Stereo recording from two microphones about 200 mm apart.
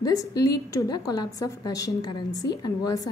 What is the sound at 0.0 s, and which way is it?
A woman's voice, 20° left (ahead or behind).